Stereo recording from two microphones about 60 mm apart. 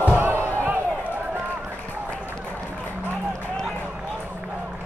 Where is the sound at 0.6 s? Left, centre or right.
Right.